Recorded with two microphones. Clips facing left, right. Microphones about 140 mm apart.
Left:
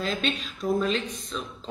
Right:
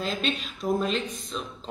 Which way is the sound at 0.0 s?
Centre (ahead or behind).